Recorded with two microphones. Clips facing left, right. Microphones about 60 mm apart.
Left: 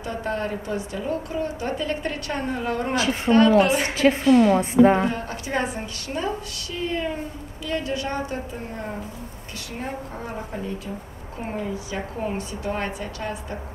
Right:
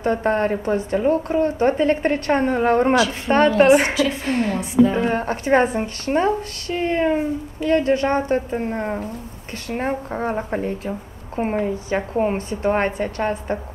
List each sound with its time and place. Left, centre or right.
0.0 s a woman's voice: right
3.9 s a woman's voice: left
4.2 s a woman's voice: right